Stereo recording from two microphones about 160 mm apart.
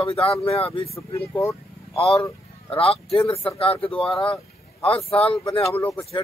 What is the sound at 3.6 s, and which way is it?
Speech, 40° left (ahead or behind).